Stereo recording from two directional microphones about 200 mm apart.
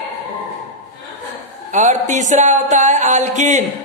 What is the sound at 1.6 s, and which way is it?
A woman's voice, 35° right (ahead or behind).